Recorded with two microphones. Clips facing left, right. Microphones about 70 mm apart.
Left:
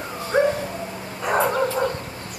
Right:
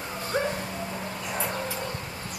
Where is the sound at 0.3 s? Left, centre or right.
Left.